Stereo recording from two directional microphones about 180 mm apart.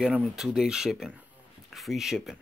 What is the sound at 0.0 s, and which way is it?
Speech, 5° right (ahead or behind).